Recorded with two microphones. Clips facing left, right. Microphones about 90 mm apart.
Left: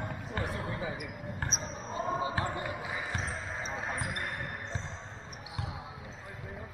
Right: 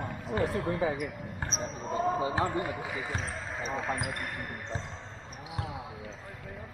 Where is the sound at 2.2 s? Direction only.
30° right (ahead or behind).